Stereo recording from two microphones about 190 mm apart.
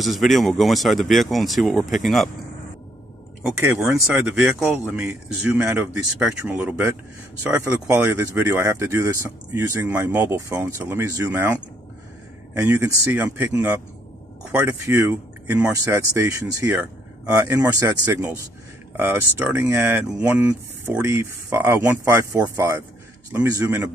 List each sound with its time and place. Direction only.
0.0 s speech: centre (ahead or behind)
3.5 s speech: 10° right (ahead or behind)
12.6 s speech: 15° right (ahead or behind)